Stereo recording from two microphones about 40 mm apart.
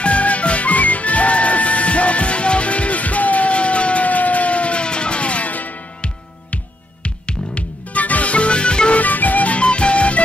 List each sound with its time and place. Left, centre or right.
0.0 s music: left
6.5 s music: left
9.0 s music: left